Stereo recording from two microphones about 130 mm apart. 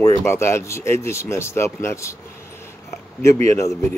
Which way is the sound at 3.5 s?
25° left (ahead or behind).